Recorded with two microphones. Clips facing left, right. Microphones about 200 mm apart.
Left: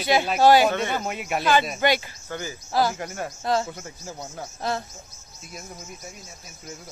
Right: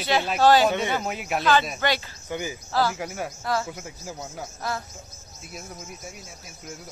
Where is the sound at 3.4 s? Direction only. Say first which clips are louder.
Left 4 dB; 20° left (ahead or behind).